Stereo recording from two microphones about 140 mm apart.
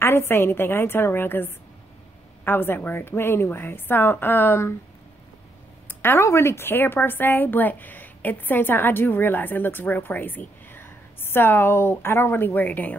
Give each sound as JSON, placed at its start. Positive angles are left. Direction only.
{"t": 0.0, "sound": "a woman's voice", "side_deg": 15}
{"t": 5.9, "sound": "a woman's voice", "side_deg": 15}